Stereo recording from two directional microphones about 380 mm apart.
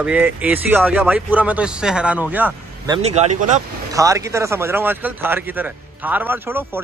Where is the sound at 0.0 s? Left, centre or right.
Centre.